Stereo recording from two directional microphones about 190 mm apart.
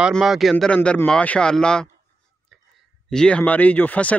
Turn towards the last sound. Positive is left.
turn(degrees=10)  # may be behind; listen again after turning